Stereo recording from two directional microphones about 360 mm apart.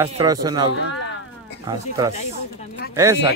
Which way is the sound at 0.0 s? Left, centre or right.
Centre.